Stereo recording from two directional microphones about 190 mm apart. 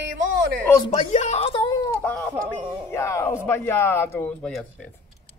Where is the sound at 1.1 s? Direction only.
40° left (ahead or behind); by 4.9 s 5° left (ahead or behind).